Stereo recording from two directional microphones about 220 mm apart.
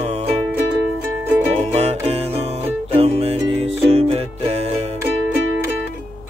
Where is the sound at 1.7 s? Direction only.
30° right (ahead or behind).